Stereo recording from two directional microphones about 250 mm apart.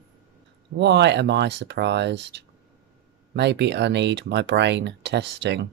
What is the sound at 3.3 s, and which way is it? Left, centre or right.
Speech, right.